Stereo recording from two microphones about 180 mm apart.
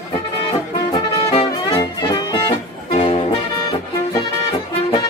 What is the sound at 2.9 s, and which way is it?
Music, 35° left (ahead or behind).